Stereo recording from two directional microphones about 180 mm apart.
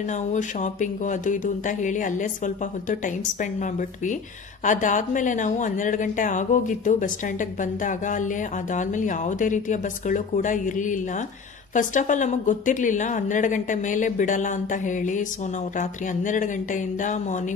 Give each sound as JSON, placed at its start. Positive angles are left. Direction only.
{"t": 0.1, "sound": "speech", "side_deg": 45}
{"t": 4.6, "sound": "speech", "side_deg": 45}